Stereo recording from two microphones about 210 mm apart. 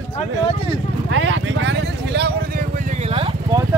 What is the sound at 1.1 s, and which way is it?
Vehicle, 60° right (ahead or behind).